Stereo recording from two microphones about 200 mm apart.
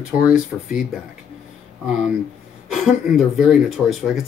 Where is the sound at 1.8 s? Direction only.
5° right (ahead or behind).